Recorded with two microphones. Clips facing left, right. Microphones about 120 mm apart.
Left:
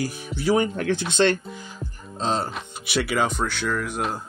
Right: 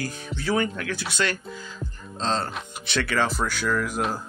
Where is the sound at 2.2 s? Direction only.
10° left (ahead or behind).